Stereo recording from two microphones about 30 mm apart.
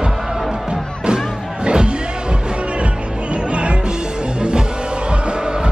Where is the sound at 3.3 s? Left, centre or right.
Right.